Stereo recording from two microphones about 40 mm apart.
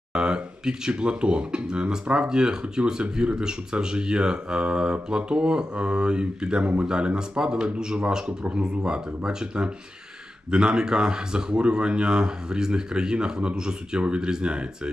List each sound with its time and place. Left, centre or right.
0.1 s speech: right